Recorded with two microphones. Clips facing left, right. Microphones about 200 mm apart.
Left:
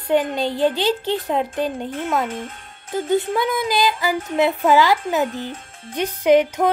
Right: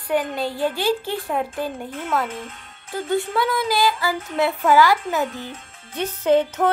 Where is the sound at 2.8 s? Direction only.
20° left (ahead or behind).